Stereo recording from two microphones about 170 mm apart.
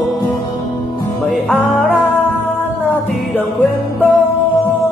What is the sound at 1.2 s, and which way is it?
Music, centre (ahead or behind).